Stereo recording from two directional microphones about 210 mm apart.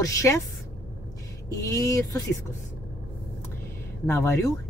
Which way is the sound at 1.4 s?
15° left (ahead or behind).